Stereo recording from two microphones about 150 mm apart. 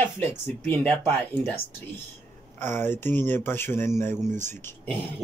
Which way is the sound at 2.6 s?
15° left (ahead or behind).